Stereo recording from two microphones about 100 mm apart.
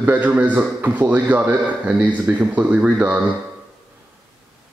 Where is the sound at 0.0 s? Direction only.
15° right (ahead or behind).